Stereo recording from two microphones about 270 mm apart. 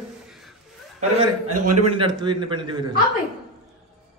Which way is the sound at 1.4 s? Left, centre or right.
Right.